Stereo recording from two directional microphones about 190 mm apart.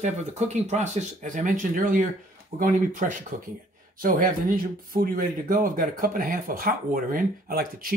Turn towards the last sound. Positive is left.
turn(degrees=-50)  # may be behind; listen again after turning